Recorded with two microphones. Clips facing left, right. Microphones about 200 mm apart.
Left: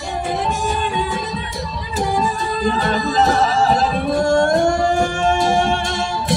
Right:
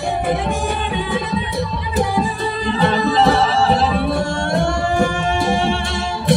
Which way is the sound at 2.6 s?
45° left (ahead or behind).